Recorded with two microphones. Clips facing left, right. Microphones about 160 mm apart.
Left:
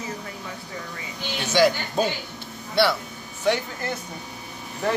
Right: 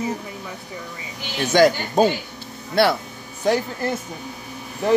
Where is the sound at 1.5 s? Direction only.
50° right (ahead or behind).